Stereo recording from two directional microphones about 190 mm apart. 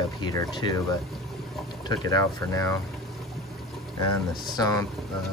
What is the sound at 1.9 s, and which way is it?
Speech, 15° left (ahead or behind).